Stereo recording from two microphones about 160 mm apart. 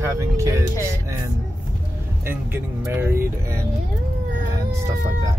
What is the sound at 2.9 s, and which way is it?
Speech, 15° right (ahead or behind).